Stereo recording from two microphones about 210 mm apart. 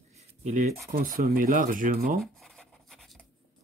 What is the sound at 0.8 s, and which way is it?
Speech, 45° right (ahead or behind).